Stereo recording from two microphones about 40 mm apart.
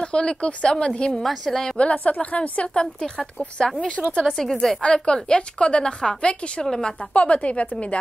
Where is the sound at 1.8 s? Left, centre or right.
Left.